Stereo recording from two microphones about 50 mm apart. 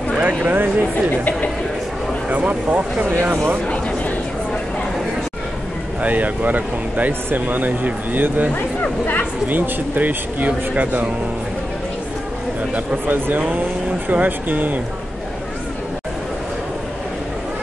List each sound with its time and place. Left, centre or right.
0.2 s speech: right
2.2 s speech: right
6.0 s speech: right
8.5 s speech: left
9.5 s speech: right
12.7 s speech: right